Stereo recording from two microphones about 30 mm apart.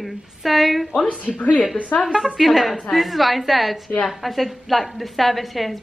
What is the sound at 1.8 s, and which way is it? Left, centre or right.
Speech, left.